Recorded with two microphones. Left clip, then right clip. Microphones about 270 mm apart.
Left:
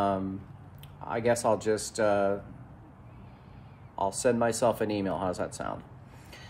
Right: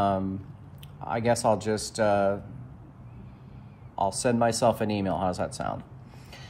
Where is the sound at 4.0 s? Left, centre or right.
Right.